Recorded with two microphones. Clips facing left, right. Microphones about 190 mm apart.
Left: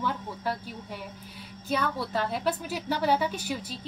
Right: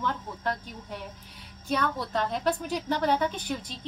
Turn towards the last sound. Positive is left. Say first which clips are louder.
# even
turn(degrees=5)  # may be behind; listen again after turning